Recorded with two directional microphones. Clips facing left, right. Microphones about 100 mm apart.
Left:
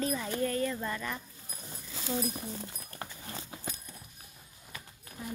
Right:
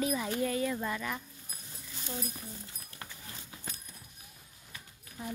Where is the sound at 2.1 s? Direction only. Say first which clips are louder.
Left 7 dB; 90° left.